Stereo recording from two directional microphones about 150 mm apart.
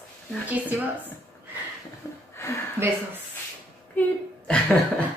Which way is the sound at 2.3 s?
15° left (ahead or behind).